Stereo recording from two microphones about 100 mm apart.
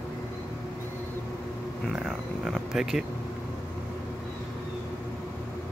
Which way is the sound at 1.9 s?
5° right (ahead or behind).